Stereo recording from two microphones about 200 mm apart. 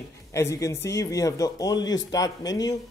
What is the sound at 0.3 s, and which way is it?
Speech, 15° left (ahead or behind).